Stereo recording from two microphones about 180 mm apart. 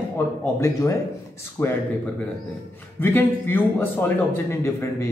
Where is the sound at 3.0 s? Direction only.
10° left (ahead or behind).